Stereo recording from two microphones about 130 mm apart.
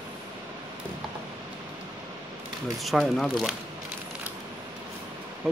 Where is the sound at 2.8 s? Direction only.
Centre (ahead or behind).